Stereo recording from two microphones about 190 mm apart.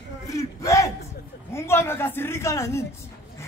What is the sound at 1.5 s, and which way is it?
Speech, 15° left (ahead or behind).